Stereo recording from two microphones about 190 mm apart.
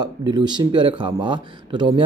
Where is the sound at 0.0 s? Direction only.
20° right (ahead or behind).